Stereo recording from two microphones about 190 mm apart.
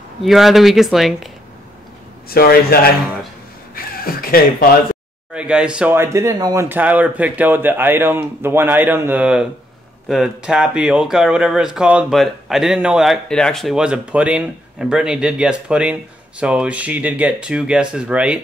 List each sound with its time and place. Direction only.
0.2 s speech: centre (ahead or behind)
2.2 s speech: 55° left (ahead or behind)
3.7 s a sound: 50° left (ahead or behind)
5.3 s speech: 5° right (ahead or behind)